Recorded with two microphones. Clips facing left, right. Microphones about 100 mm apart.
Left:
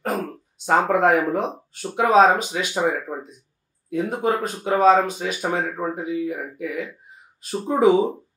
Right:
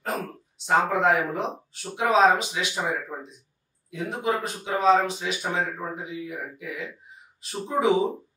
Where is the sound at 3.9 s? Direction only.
45° left (ahead or behind).